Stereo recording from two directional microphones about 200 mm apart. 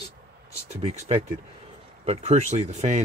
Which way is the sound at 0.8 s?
30° right (ahead or behind).